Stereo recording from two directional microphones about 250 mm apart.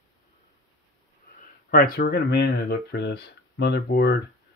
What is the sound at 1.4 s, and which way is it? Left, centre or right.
Speech, left.